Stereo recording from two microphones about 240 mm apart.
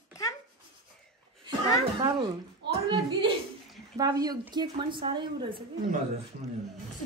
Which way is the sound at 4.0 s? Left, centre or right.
Centre.